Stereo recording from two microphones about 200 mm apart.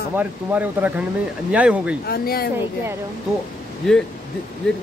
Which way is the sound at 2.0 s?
50° left (ahead or behind).